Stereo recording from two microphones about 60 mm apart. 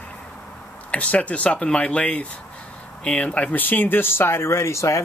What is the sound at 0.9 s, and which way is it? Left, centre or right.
Speech, left.